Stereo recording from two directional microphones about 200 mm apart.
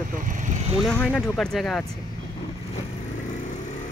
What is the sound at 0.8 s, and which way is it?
Speech, centre (ahead or behind).